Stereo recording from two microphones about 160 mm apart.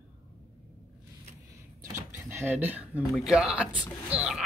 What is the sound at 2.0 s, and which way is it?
Speech, 15° right (ahead or behind).